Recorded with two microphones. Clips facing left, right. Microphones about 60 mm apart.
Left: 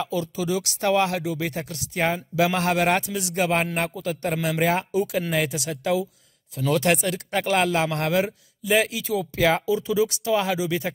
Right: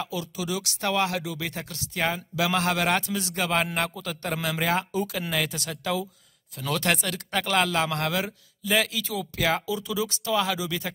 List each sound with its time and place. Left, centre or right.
0.0 s speech: left
3.0 s speech: centre